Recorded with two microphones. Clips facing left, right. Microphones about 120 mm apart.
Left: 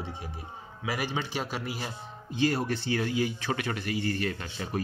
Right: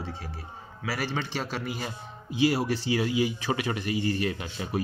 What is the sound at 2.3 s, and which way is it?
Speech, 5° right (ahead or behind).